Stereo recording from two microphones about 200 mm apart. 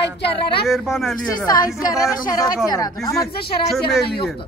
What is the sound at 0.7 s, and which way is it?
Speech, centre (ahead or behind).